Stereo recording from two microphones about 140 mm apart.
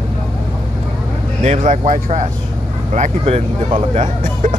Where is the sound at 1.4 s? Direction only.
60° right (ahead or behind).